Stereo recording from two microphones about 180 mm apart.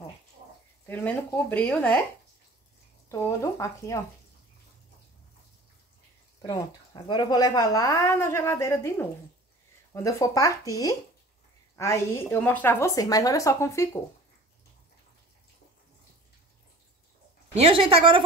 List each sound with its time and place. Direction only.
0.8 s a woman's voice: 10° left (ahead or behind)
3.1 s a woman's voice: 15° left (ahead or behind)
6.4 s speech: 25° left (ahead or behind)
10.0 s a woman's voice: 20° left (ahead or behind)
17.6 s a woman's voice: 30° right (ahead or behind)